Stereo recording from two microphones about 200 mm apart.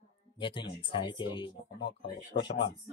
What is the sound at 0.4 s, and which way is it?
Speech, 25° left (ahead or behind).